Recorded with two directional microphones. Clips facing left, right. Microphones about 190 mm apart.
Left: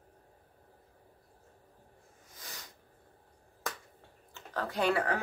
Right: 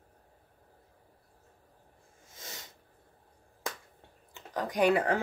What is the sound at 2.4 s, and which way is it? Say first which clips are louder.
Sneeze: right 3 dB; 25° right (ahead or behind).